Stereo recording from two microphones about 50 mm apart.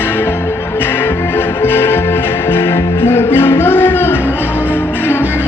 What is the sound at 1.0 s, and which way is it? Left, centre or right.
Music, left.